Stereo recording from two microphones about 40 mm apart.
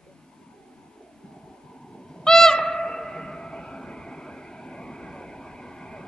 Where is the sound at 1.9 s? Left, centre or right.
Centre.